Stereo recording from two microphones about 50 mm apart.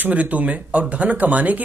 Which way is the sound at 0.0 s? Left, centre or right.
Right.